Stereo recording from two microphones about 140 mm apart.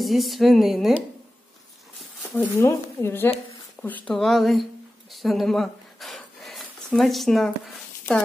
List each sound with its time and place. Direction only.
0.0 s a woman's voice: centre (ahead or behind)
2.3 s a woman's voice: 15° left (ahead or behind)
5.1 s a sound: centre (ahead or behind)